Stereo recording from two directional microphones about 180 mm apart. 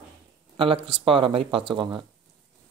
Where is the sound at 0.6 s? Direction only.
30° right (ahead or behind).